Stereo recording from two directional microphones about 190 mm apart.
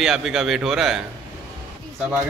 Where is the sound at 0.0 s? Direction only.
Centre (ahead or behind).